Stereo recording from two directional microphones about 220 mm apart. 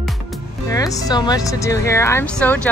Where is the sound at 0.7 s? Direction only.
15° left (ahead or behind).